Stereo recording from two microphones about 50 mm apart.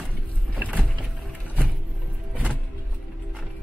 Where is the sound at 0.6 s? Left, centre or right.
Right.